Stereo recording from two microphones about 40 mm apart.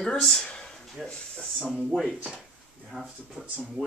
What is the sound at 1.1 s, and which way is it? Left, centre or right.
Speech, left.